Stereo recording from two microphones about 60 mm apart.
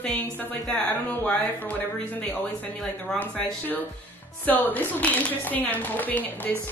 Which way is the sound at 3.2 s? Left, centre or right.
Left.